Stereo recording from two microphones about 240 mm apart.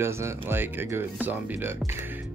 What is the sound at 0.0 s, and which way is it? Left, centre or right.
Speech, centre.